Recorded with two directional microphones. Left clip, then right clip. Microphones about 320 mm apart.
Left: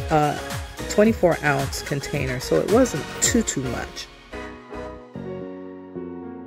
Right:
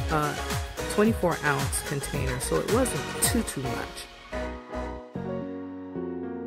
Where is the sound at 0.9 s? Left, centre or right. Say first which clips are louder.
Left 7 dB; centre.